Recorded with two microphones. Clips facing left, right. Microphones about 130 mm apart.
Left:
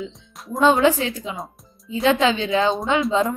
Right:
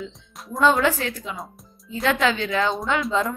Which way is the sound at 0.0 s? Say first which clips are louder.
Left 3 dB; 20° left (ahead or behind).